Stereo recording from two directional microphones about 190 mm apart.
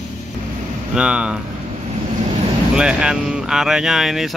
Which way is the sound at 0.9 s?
5° right (ahead or behind).